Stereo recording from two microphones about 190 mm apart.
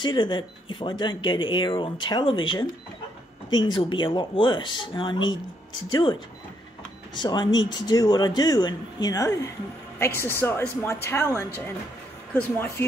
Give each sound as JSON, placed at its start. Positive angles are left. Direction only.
{"t": 0.0, "sound": "speech", "side_deg": 25}
{"t": 5.2, "sound": "speech", "side_deg": 90}
{"t": 5.9, "sound": "speech", "side_deg": 25}
{"t": 7.2, "sound": "a woman's voice", "side_deg": 20}